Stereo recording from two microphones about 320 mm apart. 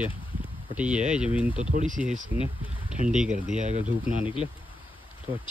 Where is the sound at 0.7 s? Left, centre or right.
Centre.